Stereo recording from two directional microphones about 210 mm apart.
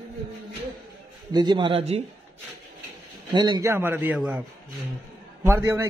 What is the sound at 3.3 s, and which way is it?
A man's voice, 20° right (ahead or behind).